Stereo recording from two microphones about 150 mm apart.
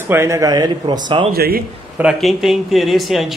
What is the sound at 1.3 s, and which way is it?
Speech, 90° right.